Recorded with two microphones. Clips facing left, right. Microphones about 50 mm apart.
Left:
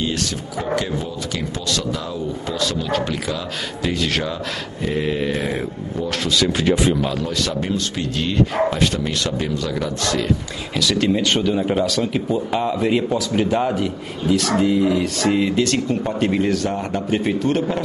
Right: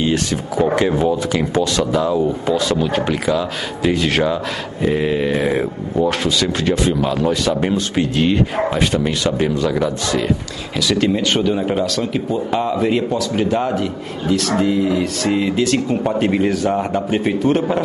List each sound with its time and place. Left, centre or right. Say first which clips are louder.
0.0 s a man's voice: right 5 dB; right
6.3 s speech: even; centre
7.1 s a man's voice: right 6 dB; centre